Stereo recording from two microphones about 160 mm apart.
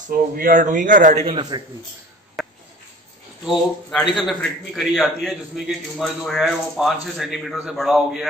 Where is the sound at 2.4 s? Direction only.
Centre (ahead or behind).